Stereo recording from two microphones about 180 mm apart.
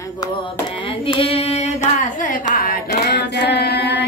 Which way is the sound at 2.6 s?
60° left (ahead or behind).